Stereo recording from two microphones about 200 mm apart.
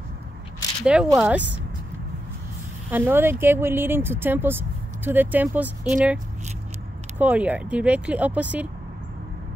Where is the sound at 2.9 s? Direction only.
10° right (ahead or behind).